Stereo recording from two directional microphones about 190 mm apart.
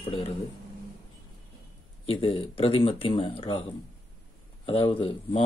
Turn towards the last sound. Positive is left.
turn(degrees=25)  # may be behind; listen again after turning